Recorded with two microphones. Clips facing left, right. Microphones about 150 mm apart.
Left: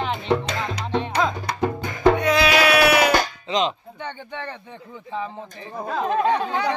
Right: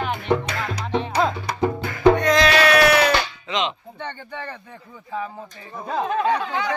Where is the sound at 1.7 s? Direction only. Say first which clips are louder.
Right 2 dB; 20° left (ahead or behind).